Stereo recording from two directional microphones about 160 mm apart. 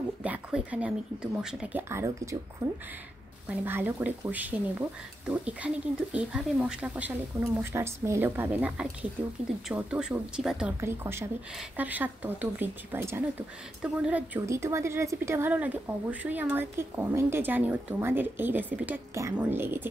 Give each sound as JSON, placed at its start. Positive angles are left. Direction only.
{"t": 0.2, "sound": "speech", "side_deg": -10}
{"t": 3.4, "sound": "speech", "side_deg": -10}
{"t": 10.8, "sound": "speech", "side_deg": -15}